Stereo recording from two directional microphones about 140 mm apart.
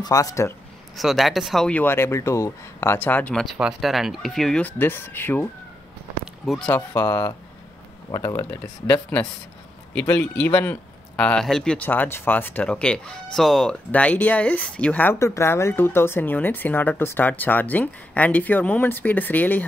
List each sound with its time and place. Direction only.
0.0 s speech: 25° left (ahead or behind)
0.9 s speech: centre (ahead or behind)
3.5 s speech: 5° right (ahead or behind); by 5.5 s 15° left (ahead or behind)
6.4 s speech: centre (ahead or behind)